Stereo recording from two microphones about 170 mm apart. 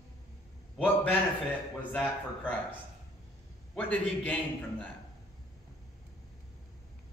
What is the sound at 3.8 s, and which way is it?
Speech, 10° left (ahead or behind).